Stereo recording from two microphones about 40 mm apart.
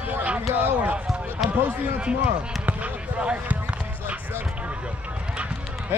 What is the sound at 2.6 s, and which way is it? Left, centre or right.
Basketball bounce, right.